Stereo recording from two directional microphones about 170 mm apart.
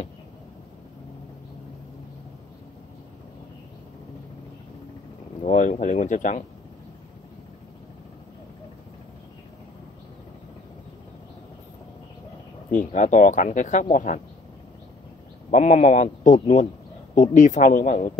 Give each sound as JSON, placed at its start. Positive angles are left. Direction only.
{"t": 5.4, "sound": "speech", "side_deg": 45}
{"t": 12.9, "sound": "speech", "side_deg": 45}
{"t": 15.5, "sound": "speech", "side_deg": 45}